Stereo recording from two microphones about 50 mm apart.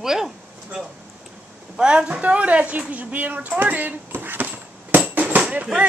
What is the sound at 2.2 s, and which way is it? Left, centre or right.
A woman's voice, right.